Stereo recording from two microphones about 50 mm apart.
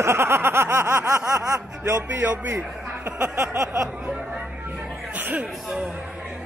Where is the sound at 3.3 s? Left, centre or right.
Right.